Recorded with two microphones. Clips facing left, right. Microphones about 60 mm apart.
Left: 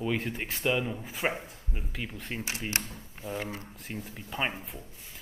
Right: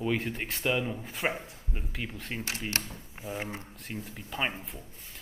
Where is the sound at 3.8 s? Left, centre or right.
Centre.